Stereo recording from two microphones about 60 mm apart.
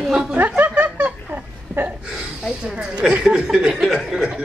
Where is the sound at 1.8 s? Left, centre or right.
Right.